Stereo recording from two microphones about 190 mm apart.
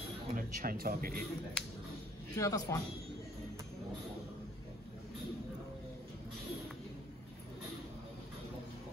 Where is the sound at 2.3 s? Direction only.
20° left (ahead or behind).